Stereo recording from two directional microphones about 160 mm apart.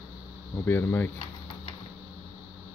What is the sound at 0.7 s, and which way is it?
Speech, 15° left (ahead or behind).